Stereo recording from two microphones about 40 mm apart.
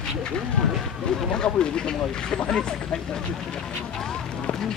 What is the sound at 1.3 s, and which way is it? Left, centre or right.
Speech, left.